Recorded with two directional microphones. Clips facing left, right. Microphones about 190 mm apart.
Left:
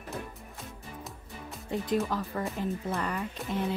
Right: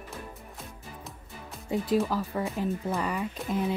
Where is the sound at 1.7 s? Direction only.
5° right (ahead or behind).